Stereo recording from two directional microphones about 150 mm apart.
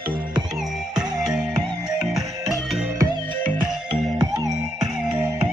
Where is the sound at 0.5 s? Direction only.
5° right (ahead or behind).